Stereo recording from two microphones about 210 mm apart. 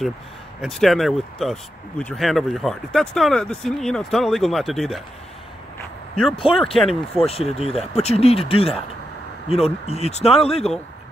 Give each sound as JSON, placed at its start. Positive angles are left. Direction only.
{"t": 0.6, "sound": "speech", "side_deg": 0}
{"t": 6.3, "sound": "speech", "side_deg": 25}
{"t": 6.8, "sound": "speech", "side_deg": 0}
{"t": 7.2, "sound": "speech", "side_deg": 30}